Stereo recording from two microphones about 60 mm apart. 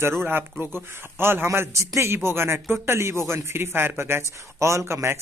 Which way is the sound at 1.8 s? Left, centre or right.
Right.